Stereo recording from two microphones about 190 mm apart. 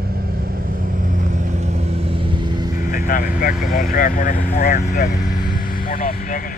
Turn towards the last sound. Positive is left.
turn(degrees=50)  # may be behind; listen again after turning